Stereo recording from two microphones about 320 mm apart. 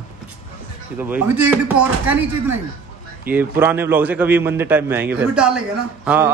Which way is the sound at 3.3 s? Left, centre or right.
Centre.